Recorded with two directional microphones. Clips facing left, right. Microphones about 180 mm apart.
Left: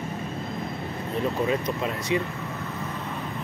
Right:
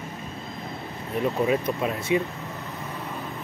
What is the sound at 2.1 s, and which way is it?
Speech, 20° right (ahead or behind).